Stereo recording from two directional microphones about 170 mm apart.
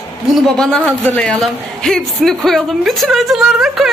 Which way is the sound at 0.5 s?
5° left (ahead or behind).